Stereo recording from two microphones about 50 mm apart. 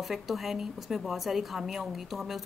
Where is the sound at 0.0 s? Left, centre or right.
Centre.